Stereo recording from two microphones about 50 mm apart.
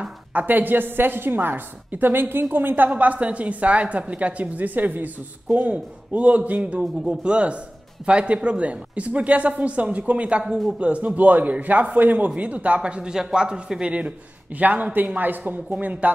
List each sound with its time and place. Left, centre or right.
0.3 s a woman's voice: right